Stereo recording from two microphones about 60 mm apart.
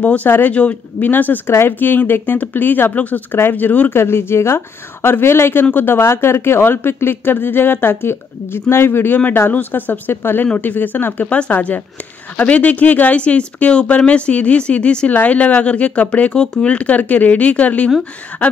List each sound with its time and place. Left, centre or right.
0.0 s speech: left
3.9 s speech: left
11.2 s speech: left